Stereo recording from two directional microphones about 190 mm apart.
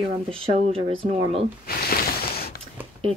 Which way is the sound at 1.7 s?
55° left (ahead or behind).